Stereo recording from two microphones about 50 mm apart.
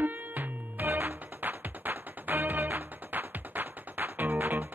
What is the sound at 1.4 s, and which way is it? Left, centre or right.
Music, right.